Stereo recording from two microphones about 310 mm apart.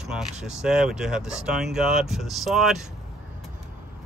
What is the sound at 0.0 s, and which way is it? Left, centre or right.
Speech, centre.